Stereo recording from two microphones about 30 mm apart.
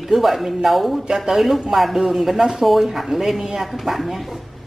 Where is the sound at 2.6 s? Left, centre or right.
Centre.